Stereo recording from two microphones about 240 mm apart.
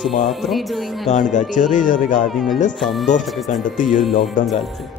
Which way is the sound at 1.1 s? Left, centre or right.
Left.